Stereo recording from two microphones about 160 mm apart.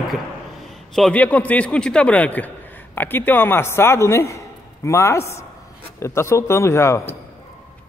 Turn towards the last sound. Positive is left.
turn(degrees=15)  # may be behind; listen again after turning